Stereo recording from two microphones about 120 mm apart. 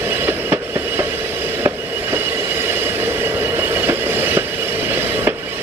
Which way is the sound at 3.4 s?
15° right (ahead or behind).